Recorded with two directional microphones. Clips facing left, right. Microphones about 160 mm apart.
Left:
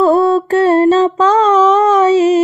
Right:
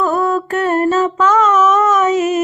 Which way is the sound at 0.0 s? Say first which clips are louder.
Left 6 dB; 30° left (ahead or behind).